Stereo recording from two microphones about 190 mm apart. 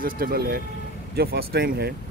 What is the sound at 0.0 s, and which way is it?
Speech, 50° right (ahead or behind).